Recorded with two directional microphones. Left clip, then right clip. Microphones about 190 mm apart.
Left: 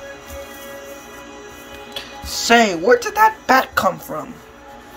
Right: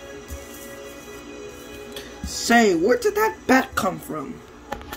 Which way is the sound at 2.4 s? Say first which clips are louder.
Left 3 dB; 10° left (ahead or behind).